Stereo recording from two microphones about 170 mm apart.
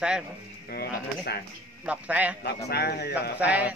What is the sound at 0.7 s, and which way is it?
Speech, 65° left (ahead or behind).